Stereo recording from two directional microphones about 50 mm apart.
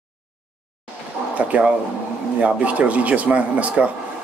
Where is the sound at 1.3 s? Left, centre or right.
Right.